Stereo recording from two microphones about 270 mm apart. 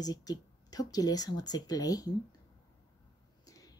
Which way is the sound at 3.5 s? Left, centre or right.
Centre.